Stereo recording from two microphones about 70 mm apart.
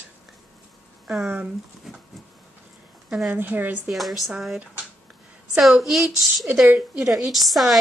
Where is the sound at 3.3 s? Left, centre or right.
Right.